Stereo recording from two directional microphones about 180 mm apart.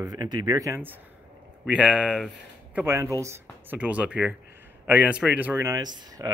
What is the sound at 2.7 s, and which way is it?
A man's voice, 15° right (ahead or behind).